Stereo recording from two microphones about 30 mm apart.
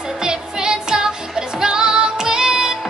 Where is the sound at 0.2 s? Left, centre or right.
Right.